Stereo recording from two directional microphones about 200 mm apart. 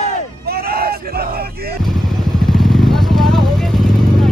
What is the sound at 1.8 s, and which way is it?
Vehicle, centre (ahead or behind).